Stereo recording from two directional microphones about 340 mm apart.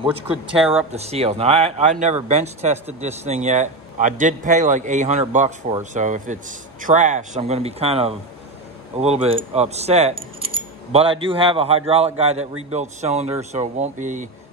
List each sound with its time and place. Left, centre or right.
0.9 s speech: centre